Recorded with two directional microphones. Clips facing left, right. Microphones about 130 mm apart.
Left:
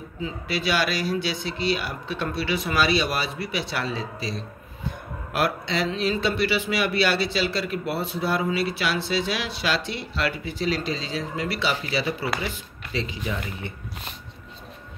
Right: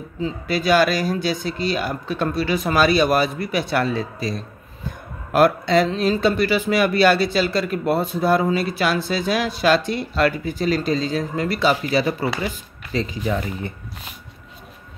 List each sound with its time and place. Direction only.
0.2 s speech: 45° right (ahead or behind)